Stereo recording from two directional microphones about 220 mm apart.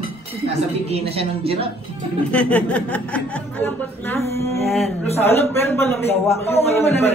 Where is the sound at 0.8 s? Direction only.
25° right (ahead or behind).